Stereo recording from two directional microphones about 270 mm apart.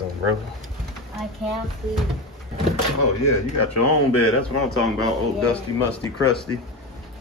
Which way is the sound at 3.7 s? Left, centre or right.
Left.